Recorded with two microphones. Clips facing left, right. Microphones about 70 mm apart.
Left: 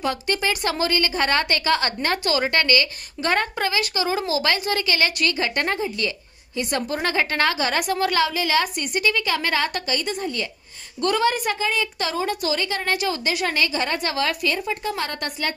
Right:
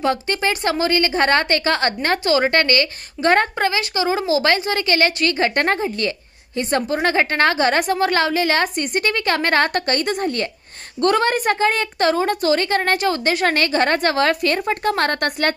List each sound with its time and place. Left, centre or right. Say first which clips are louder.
0.0 s a woman's voice: right 4 dB; right